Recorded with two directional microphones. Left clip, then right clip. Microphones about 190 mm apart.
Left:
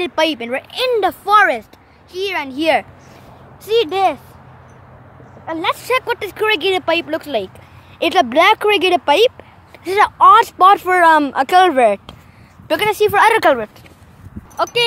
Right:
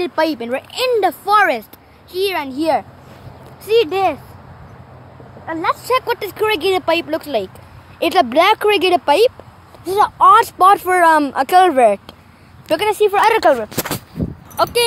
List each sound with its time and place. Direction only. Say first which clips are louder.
0.0 s speech: left 1 dB; 15° left (ahead or behind)
2.1 s a child's voice: right 2 dB; 15° right (ahead or behind)
2.5 s speech: left 2 dB; 20° left (ahead or behind)
6.0 s speech: even; 5° left (ahead or behind)
9.9 s speech: left 1 dB; 20° left (ahead or behind)
11.7 s speech: right 1 dB; 5° left (ahead or behind)
14.6 s speech: right 1 dB; 5° right (ahead or behind)